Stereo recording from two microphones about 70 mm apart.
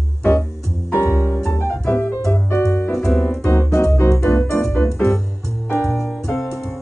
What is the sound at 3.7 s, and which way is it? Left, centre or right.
Music, left.